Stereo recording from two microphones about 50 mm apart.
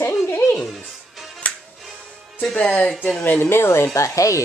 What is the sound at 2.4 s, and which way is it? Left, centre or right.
Speech, centre.